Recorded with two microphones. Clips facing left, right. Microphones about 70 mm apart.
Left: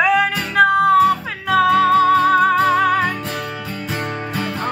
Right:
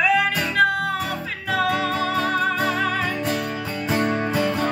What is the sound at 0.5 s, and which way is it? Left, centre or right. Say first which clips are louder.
Music: left 8 dB; left.